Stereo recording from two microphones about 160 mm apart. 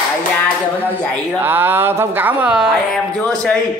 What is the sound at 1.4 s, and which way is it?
Speech, 15° right (ahead or behind).